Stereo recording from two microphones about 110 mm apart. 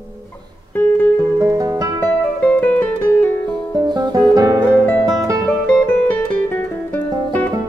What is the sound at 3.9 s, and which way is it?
Music, 40° right (ahead or behind).